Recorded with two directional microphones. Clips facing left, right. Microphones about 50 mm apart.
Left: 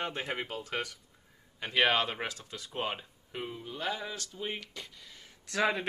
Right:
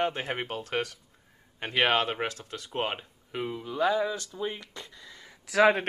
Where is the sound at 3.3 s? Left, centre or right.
Right.